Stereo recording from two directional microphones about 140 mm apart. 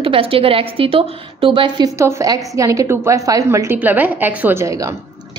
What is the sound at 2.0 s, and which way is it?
A woman's voice, 20° right (ahead or behind).